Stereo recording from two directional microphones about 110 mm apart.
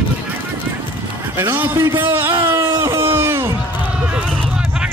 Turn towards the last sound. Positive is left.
turn(degrees=-20)  # may be behind; listen again after turning